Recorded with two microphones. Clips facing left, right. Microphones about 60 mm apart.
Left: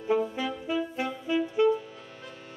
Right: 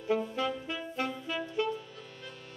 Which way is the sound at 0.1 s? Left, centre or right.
Centre.